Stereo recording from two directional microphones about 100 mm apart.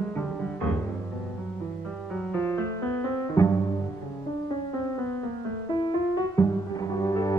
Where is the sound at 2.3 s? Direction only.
20° left (ahead or behind).